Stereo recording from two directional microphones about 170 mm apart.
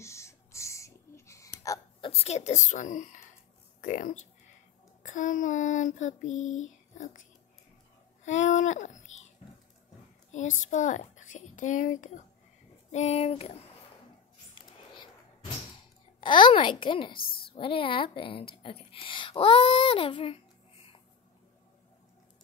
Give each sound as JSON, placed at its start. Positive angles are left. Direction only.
{"t": 0.0, "sound": "hiccup", "side_deg": 15}
{"t": 2.0, "sound": "child singing", "side_deg": 40}
{"t": 8.2, "sound": "a child's voice", "side_deg": 45}
{"t": 10.3, "sound": "a woman's voice", "side_deg": 45}
{"t": 16.2, "sound": "a child's voice", "side_deg": 30}